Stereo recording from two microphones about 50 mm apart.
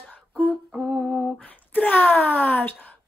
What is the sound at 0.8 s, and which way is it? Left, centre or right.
Humming, centre.